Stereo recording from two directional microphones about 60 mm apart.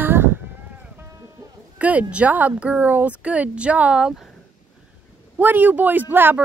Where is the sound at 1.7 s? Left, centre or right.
Right.